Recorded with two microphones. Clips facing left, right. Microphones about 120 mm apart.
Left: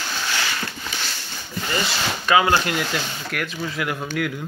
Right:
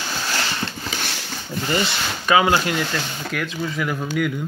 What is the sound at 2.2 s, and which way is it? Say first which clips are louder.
Speech: right 1 dB; 15° right (ahead or behind).